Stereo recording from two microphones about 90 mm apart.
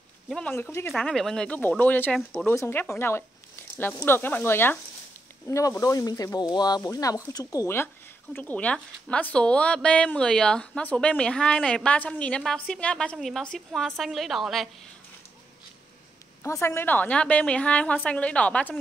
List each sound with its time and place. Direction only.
0.4 s a woman's voice: 15° left (ahead or behind)
0.7 s speech: 30° left (ahead or behind)
0.9 s a woman's voice: 5° left (ahead or behind)
1.6 s speech: 20° left (ahead or behind)
5.5 s speech: 35° left (ahead or behind)
8.4 s a woman's voice: 15° left (ahead or behind); by 14.7 s centre (ahead or behind)
16.4 s a woman's voice: 30° left (ahead or behind)